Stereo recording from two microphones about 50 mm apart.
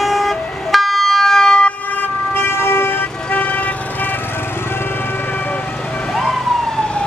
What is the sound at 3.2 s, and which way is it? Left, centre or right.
Vehicle, left.